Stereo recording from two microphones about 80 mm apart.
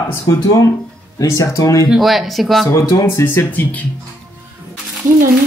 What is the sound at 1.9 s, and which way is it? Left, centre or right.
Speech, centre.